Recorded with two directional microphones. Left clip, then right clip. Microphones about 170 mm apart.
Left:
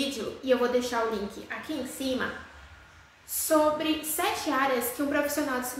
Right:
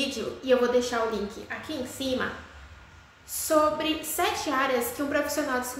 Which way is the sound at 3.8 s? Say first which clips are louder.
Right 1 dB; 15° right (ahead or behind).